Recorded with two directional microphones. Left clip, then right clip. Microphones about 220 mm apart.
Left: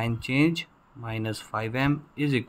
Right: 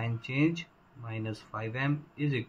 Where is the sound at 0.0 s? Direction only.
50° left (ahead or behind).